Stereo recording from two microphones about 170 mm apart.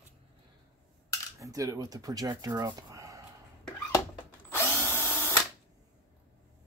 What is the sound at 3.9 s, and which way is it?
Drill, 15° left (ahead or behind).